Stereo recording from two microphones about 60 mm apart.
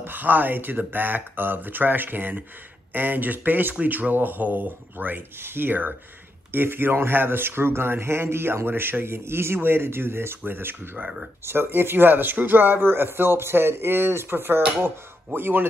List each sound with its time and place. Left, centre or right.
0.0 s speech: right